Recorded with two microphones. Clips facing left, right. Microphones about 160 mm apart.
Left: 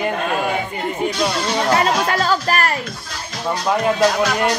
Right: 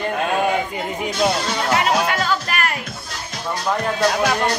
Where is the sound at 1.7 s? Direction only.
35° left (ahead or behind).